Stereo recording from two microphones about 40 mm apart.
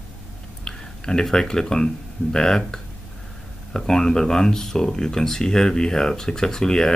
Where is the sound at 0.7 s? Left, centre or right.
Centre.